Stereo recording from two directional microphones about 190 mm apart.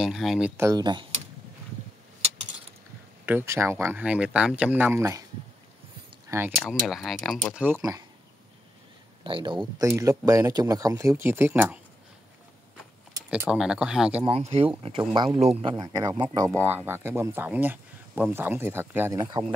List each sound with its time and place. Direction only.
0.0 s speech: centre (ahead or behind)
0.6 s speech: 20° right (ahead or behind)
3.3 s speech: 10° right (ahead or behind)
6.2 s a sound: 10° right (ahead or behind)
6.6 s speech: centre (ahead or behind)
9.2 s speech: 25° right (ahead or behind); by 11.8 s 10° right (ahead or behind)
13.3 s speech: 5° right (ahead or behind)
14.2 s speech: 30° right (ahead or behind)